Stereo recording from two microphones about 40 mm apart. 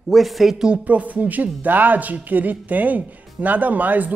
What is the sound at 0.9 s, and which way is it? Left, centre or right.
Speech, right.